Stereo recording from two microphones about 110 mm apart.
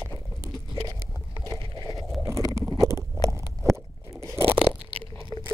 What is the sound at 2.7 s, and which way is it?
Crunch, 30° right (ahead or behind).